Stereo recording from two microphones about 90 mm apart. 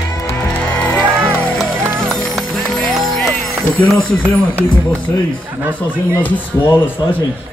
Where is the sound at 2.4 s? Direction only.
Centre (ahead or behind).